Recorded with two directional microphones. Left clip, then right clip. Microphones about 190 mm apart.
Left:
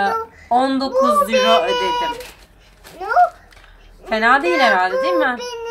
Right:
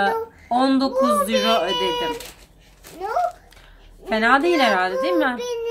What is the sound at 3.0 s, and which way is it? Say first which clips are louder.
Speech: left 5 dB; 15° left (ahead or behind).